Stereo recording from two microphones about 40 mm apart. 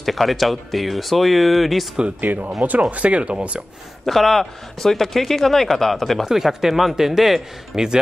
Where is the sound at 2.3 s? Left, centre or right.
Right.